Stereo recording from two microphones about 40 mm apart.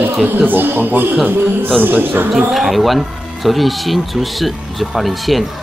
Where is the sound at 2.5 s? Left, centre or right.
Centre.